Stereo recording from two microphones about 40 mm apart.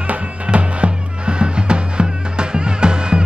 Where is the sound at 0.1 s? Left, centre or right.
Right.